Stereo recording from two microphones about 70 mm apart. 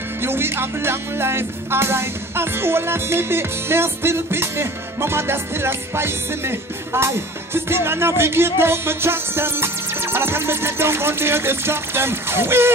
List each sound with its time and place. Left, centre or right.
0.2 s music: right